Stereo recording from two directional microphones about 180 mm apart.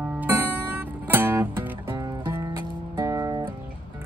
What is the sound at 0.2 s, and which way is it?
Music, 10° right (ahead or behind).